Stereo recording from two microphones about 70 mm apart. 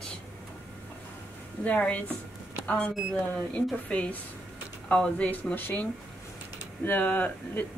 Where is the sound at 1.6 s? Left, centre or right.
Left.